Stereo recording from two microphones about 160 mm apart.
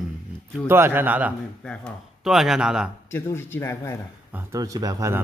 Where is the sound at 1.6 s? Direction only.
5° left (ahead or behind).